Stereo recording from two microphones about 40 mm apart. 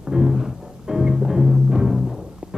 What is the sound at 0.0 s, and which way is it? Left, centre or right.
Music, centre.